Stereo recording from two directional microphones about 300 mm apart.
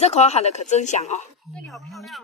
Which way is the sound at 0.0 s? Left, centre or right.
Left.